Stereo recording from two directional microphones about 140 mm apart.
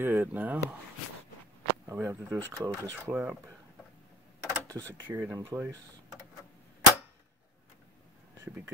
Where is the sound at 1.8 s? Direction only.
20° right (ahead or behind).